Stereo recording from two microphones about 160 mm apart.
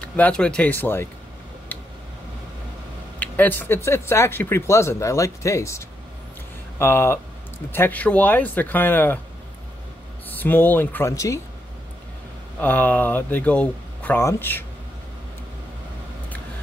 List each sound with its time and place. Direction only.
0.0 s speech: 10° left (ahead or behind)
3.2 s speech: 10° left (ahead or behind)
10.4 s speech: 10° left (ahead or behind)
12.5 s speech: 10° left (ahead or behind)